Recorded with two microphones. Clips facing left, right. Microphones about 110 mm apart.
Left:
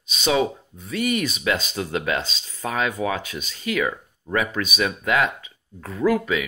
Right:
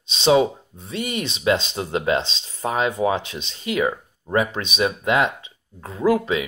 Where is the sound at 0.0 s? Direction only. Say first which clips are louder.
Right 4 dB; 30° right (ahead or behind).